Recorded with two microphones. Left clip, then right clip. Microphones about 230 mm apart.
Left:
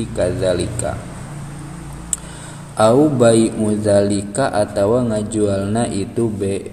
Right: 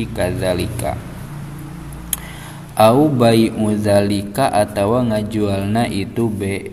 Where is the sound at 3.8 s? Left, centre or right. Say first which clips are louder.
Left 1 dB; right.